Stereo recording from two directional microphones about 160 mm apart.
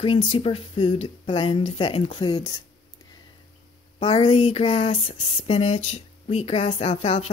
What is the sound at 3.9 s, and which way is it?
Speech, 30° left (ahead or behind).